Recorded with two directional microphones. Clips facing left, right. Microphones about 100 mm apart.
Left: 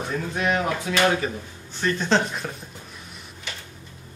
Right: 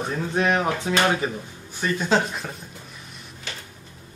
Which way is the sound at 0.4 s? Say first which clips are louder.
Right 2 dB; 30° right (ahead or behind).